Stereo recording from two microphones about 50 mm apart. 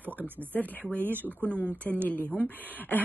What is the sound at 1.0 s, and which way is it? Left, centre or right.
Speech, right.